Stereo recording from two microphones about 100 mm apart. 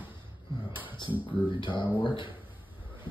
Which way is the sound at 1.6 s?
55° left (ahead or behind).